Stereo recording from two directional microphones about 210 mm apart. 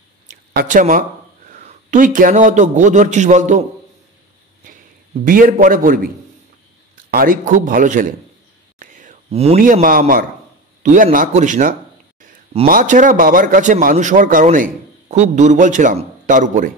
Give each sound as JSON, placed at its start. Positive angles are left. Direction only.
{"t": 0.3, "sound": "a sound", "side_deg": -40}
{"t": 1.5, "sound": "a man's voice", "side_deg": -35}
{"t": 5.2, "sound": "a man's voice", "side_deg": -40}
{"t": 7.1, "sound": "a man's voice", "side_deg": -45}